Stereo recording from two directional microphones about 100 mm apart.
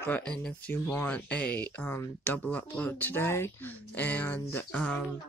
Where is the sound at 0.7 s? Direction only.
20° left (ahead or behind).